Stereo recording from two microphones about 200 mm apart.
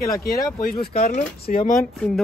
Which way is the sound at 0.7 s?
30° left (ahead or behind).